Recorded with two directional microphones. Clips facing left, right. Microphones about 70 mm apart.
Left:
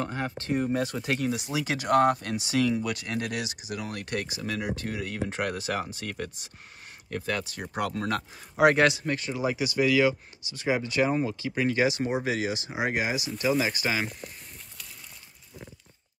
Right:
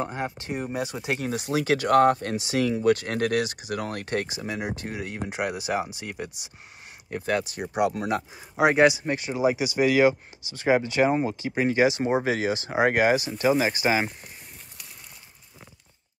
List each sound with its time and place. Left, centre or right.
0.0 s speech: right
1.1 s speech: right
4.0 s speech: right
5.3 s speech: centre
7.1 s speech: right; by 9.0 s centre
9.0 s speech: centre; by 13.3 s right
13.4 s speech: right